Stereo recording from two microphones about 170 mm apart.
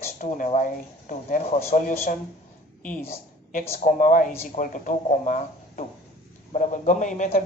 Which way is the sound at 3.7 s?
50° left (ahead or behind).